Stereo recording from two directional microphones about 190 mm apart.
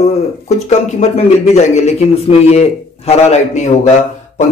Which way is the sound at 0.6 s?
35° left (ahead or behind).